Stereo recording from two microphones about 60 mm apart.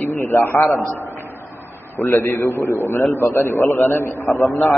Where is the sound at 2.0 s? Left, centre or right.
Left.